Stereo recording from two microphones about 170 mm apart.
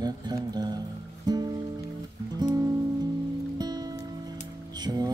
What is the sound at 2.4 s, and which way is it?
Music, 20° right (ahead or behind).